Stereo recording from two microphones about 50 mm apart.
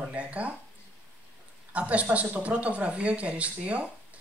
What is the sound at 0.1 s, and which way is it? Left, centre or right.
Speech, right.